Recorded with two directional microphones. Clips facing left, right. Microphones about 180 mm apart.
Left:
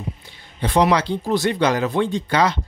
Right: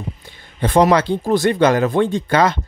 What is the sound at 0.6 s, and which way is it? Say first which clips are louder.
Speech: right 4 dB; 50° right (ahead or behind).